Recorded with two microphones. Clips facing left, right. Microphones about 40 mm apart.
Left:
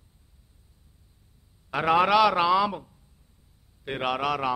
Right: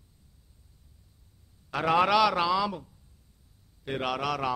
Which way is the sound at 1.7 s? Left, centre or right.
Centre.